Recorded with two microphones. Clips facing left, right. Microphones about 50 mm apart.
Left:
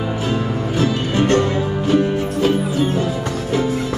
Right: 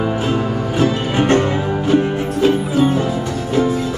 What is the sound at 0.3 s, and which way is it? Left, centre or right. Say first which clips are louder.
Music: right 2 dB; right.